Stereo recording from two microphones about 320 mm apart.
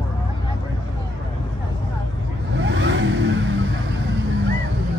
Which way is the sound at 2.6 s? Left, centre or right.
Right.